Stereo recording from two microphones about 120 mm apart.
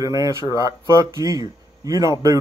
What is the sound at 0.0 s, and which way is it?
A man's voice, 30° right (ahead or behind).